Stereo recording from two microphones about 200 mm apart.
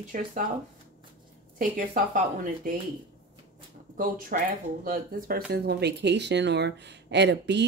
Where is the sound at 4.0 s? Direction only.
45° right (ahead or behind); by 7.6 s 60° right (ahead or behind).